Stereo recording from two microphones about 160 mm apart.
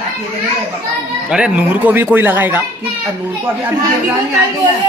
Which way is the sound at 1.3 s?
5° right (ahead or behind).